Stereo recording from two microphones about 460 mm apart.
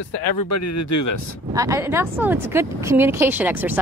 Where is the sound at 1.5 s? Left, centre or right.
Centre.